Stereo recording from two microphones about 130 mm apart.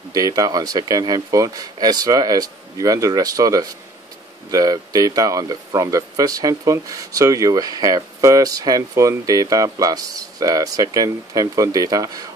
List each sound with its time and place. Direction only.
0.1 s speech: 30° right (ahead or behind)